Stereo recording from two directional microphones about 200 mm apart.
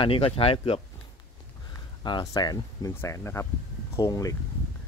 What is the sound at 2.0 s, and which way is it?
Speech, 20° left (ahead or behind).